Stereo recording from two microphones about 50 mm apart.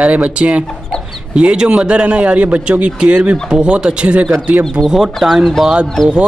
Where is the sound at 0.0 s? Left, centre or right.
Right.